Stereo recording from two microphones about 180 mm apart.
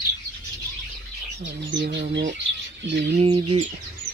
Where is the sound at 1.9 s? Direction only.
80° right.